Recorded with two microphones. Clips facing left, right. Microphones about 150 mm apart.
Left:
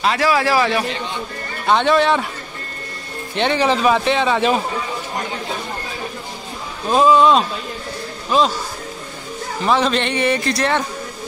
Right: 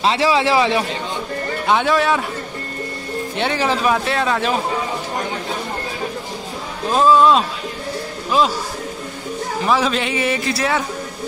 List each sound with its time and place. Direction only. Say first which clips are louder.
0.0 s a man's voice: right 1 dB; 25° right (ahead or behind)
1.7 s speech: left 2 dB; 5° right (ahead or behind)
3.3 s speech: left 3 dB; 5° right (ahead or behind)
7.2 s speech: even; centre (ahead or behind)
9.7 s speech: left 2 dB; 5° right (ahead or behind)